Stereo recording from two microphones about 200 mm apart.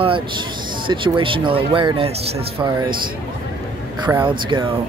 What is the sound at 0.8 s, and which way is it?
Speech, 25° right (ahead or behind).